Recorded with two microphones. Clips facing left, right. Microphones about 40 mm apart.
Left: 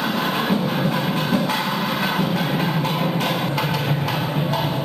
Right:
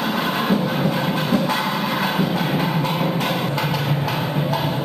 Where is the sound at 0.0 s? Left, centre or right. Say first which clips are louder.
Even; centre.